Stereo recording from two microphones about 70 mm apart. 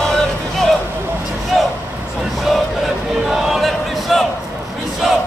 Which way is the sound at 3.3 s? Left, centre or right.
Centre.